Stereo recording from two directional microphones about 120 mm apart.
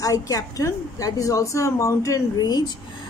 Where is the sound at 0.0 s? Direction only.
30° left (ahead or behind).